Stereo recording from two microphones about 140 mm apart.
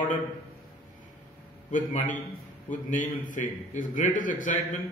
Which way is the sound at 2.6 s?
65° left (ahead or behind).